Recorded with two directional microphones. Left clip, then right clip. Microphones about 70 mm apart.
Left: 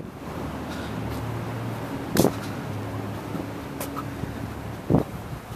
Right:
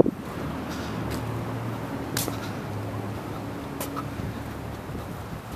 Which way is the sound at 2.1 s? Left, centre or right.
Centre.